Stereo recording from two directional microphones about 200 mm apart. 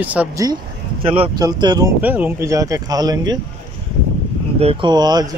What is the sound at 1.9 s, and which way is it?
Speech, 10° right (ahead or behind).